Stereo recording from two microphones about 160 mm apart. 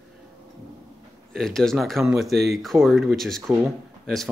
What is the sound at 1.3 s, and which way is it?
Speech, 5° left (ahead or behind).